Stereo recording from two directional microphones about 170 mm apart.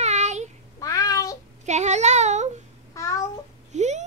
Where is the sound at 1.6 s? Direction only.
45° right (ahead or behind).